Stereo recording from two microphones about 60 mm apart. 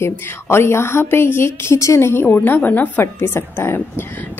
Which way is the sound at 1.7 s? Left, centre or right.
Left.